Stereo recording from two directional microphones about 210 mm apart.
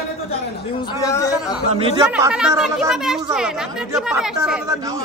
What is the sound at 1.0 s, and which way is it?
Speech, 15° left (ahead or behind).